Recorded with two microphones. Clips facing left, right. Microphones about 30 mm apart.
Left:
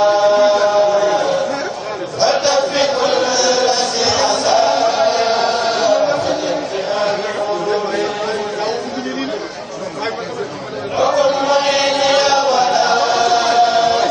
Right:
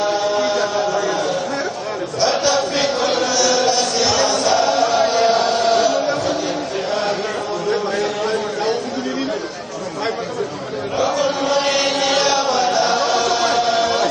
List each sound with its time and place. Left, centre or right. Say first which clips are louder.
0.0 s chant: left 7 dB; centre
11.0 s chant: left 5 dB; centre